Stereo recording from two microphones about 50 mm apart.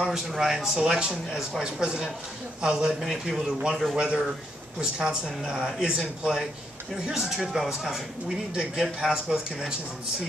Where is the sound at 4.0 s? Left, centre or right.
Centre.